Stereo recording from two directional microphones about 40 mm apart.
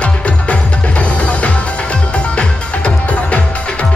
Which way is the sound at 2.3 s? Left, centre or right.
Left.